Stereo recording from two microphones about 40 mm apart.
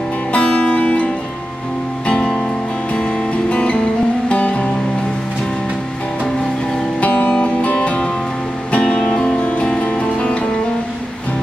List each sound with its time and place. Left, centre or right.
0.3 s music: left
2.0 s music: centre
7.0 s music: left
9.1 s music: centre
9.4 s music: left